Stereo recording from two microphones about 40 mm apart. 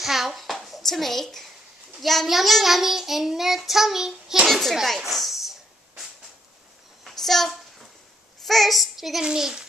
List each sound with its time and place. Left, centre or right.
0.0 s a child's voice: centre
0.3 s a sound: centre
2.0 s a child's voice: centre
2.2 s child singing: centre
4.5 s a child's voice: centre
7.1 s a sound: centre
8.4 s a woman's voice: centre
9.2 s a child's voice: centre